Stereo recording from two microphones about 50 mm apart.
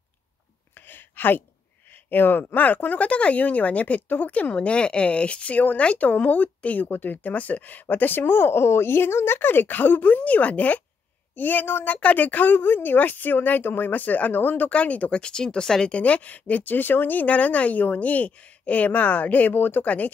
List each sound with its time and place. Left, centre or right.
0.7 s a sound: left
2.0 s speech: left
14.7 s speech: left
16.0 s speech: left